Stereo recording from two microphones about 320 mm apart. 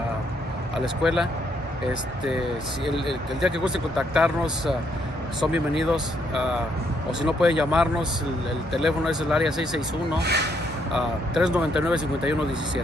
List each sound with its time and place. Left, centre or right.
1.0 s speech: centre
10.1 s speech: right
10.9 s speech: centre